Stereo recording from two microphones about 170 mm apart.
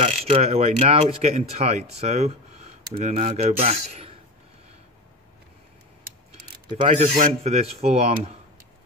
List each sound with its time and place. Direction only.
0.0 s speech: 35° right (ahead or behind)
6.9 s speech: 45° right (ahead or behind)